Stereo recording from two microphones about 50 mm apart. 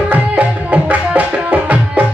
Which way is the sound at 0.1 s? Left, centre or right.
Right.